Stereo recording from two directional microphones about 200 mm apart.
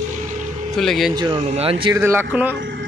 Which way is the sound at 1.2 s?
25° right (ahead or behind).